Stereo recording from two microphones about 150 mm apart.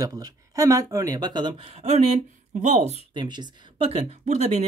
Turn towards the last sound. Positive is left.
turn(degrees=-45)  # may be behind; listen again after turning